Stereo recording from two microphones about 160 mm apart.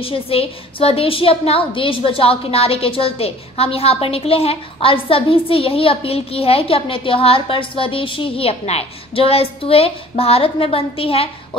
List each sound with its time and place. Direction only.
0.0 s a woman's voice: 35° left (ahead or behind)